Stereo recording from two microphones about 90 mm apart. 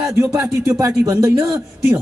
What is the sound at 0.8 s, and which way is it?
Speech, 35° right (ahead or behind).